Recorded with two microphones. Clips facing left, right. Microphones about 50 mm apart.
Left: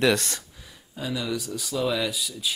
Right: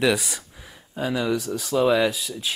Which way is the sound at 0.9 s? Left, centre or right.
Right.